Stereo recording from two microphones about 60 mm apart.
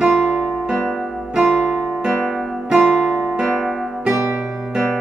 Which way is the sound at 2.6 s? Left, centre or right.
Centre.